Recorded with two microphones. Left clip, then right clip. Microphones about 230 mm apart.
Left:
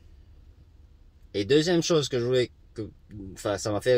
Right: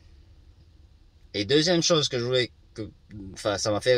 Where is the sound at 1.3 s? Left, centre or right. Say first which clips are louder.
Even; centre.